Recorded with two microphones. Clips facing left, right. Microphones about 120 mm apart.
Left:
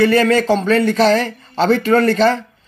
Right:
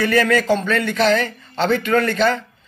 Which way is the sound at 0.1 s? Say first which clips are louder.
Left 3 dB; 30° left (ahead or behind).